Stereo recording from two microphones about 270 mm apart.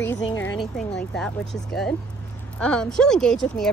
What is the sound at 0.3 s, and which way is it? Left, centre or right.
A woman's voice, centre.